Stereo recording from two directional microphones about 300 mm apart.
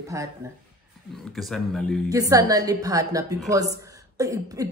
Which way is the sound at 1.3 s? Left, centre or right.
Centre.